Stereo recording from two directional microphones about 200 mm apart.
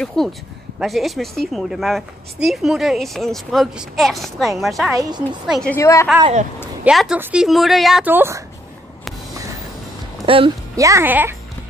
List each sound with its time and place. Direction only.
0.0 s a woman's voice: 5° left (ahead or behind)
5.8 s a woman's voice: 15° left (ahead or behind)
6.8 s a woman's voice: 5° right (ahead or behind)
10.2 s speech: 25° right (ahead or behind)
10.8 s speech: 15° right (ahead or behind)